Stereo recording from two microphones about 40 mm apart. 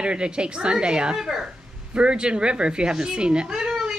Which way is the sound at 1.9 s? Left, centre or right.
Right.